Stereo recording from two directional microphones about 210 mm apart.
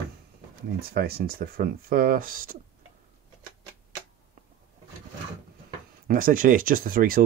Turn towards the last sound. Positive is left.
turn(degrees=-45)  # may be behind; listen again after turning